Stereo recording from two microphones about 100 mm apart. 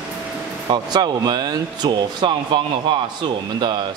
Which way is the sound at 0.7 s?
45° right (ahead or behind).